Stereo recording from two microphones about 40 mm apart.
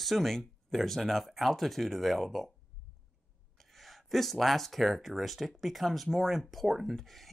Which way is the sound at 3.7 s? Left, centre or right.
Centre.